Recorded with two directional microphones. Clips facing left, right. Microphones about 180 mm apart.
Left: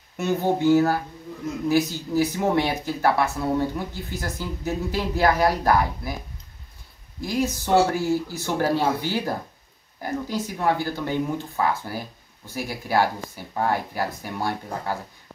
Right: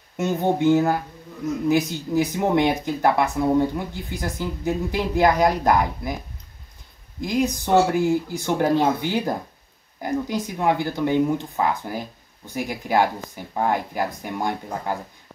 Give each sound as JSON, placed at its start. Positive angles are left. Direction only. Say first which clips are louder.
{"t": 0.2, "sound": "speech", "louder": "right 1 dB", "side_deg": -20}
{"t": 7.2, "sound": "speech", "louder": "right 2 dB", "side_deg": -15}